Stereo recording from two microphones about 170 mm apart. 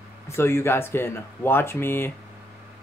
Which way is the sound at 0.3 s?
15° left (ahead or behind).